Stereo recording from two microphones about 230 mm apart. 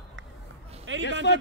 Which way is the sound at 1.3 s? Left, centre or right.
Left.